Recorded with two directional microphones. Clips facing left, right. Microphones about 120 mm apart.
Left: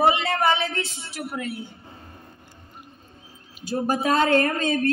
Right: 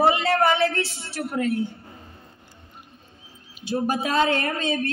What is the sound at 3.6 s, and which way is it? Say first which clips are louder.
A man's voice: left 1 dB; 40° left (ahead or behind).